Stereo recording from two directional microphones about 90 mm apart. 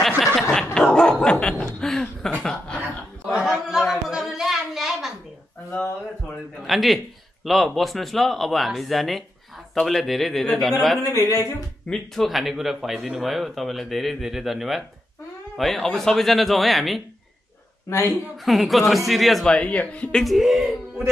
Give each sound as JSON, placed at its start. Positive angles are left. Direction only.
{"t": 0.3, "sound": "chuckle", "side_deg": 5}
{"t": 0.7, "sound": "dog", "side_deg": 10}
{"t": 1.7, "sound": "a sound", "side_deg": 5}
{"t": 3.3, "sound": "a sound", "side_deg": -5}
{"t": 6.6, "sound": "a sound", "side_deg": 0}
{"t": 7.4, "sound": "a man's voice", "side_deg": 0}
{"t": 11.1, "sound": "speech", "side_deg": 35}
{"t": 11.9, "sound": "a man's voice", "side_deg": 0}
{"t": 17.8, "sound": "speech", "side_deg": 35}
{"t": 18.4, "sound": "a man's voice", "side_deg": 0}
{"t": 20.2, "sound": "a man's voice", "side_deg": -5}